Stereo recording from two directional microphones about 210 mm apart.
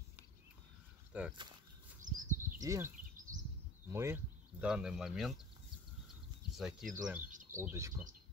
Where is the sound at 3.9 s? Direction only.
10° right (ahead or behind).